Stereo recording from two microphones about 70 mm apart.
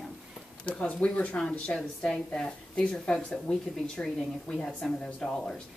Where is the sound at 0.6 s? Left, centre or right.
Centre.